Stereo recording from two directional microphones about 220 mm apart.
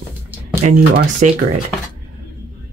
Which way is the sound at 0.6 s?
35° right (ahead or behind).